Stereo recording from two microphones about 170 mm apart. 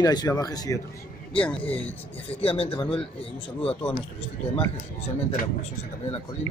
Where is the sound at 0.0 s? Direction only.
20° left (ahead or behind).